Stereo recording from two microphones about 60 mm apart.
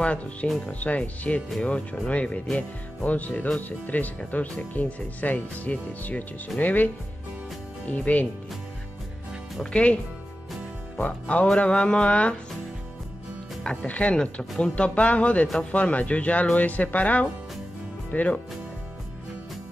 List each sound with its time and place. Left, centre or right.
0.0 s speech: left
9.6 s speech: centre
11.0 s speech: left
13.7 s speech: left